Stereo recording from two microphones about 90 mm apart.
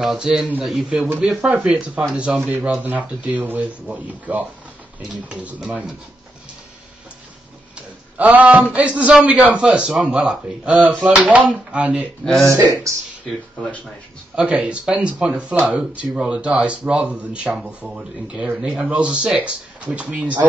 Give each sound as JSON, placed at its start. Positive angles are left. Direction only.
{"t": 0.0, "sound": "a man's voice", "side_deg": -5}
{"t": 7.7, "sound": "a sound", "side_deg": -15}
{"t": 8.7, "sound": "speech", "side_deg": -15}
{"t": 12.4, "sound": "speech", "side_deg": -40}
{"t": 14.3, "sound": "speech", "side_deg": -15}